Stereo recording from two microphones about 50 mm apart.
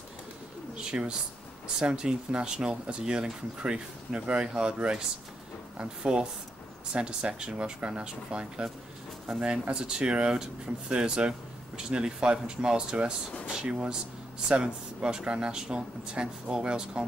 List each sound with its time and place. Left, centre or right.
0.9 s speech: right
1.8 s speech: centre